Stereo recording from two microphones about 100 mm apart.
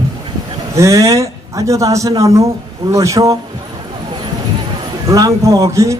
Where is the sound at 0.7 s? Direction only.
30° right (ahead or behind).